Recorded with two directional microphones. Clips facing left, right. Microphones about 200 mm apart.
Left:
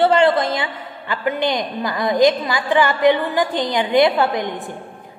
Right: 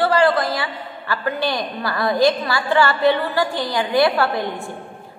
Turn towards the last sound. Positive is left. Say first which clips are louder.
# left 1 dB
turn(degrees=20)  # may be behind; listen again after turning